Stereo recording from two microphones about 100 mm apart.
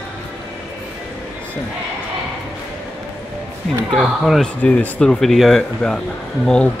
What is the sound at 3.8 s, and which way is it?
Speech, centre (ahead or behind).